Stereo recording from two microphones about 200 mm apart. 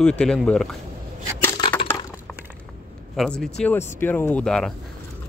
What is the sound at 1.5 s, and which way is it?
Crushing, 25° left (ahead or behind).